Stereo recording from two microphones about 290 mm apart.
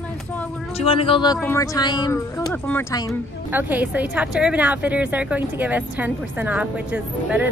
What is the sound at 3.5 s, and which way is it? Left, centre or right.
A woman's voice, centre.